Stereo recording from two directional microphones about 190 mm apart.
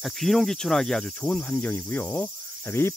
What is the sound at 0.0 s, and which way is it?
Speech, centre (ahead or behind).